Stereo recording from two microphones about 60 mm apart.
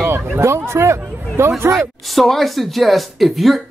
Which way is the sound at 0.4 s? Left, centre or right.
Right.